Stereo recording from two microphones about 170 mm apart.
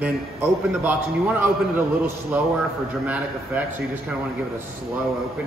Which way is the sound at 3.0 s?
10° right (ahead or behind).